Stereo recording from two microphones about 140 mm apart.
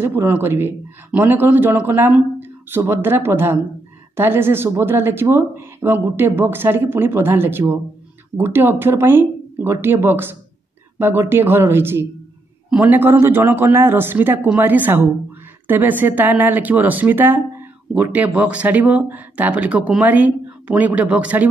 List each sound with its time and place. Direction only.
0.0 s speech: 15° right (ahead or behind)